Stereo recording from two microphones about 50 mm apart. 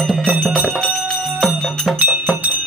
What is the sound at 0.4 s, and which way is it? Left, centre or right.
Bell, centre.